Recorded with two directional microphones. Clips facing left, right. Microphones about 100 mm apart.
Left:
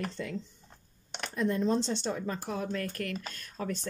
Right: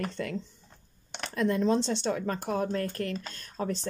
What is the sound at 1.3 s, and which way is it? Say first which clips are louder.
Speech: right 3 dB; 85° right.